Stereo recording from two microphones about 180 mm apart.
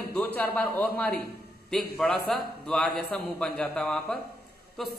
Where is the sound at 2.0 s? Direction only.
5° left (ahead or behind).